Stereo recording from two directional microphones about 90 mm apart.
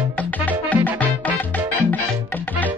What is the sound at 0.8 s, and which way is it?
Music, 15° left (ahead or behind).